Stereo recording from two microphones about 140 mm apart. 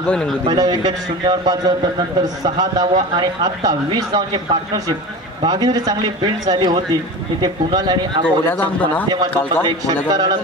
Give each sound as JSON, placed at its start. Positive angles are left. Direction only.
{"t": 0.5, "sound": "a man's voice", "side_deg": -30}
{"t": 8.5, "sound": "speech", "side_deg": 15}